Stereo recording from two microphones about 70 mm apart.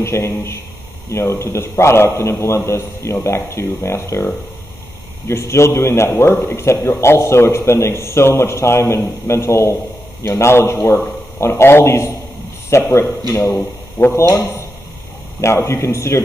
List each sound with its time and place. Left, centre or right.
0.0 s a man's voice: left
5.3 s a man's voice: left
13.6 s speech: left
15.4 s a man's voice: left